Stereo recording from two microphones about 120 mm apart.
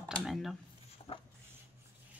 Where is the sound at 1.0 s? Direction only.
55° left (ahead or behind).